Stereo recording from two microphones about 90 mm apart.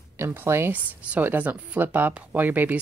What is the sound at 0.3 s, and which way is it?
Speech, 25° right (ahead or behind).